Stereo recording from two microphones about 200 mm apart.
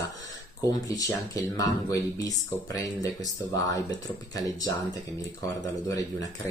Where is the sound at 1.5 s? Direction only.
15° left (ahead or behind).